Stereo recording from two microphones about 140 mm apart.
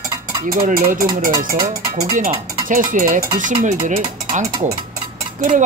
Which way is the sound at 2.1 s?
70° right (ahead or behind).